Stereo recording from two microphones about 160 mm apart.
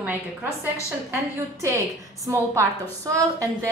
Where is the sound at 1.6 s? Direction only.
20° right (ahead or behind).